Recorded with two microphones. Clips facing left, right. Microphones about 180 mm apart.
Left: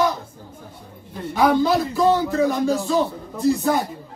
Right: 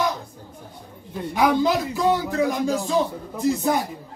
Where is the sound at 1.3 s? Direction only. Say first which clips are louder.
Left 2 dB; 15° right (ahead or behind).